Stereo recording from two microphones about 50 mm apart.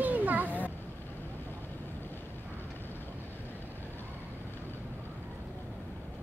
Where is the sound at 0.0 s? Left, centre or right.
Right.